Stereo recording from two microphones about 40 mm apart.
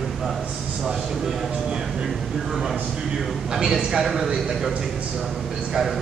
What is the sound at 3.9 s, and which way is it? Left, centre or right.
Speech, centre.